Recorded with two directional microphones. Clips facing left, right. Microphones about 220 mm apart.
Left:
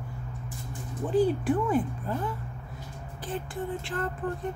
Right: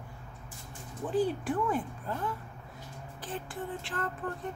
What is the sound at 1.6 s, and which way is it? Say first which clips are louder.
Speech: left 5 dB; 10° left (ahead or behind).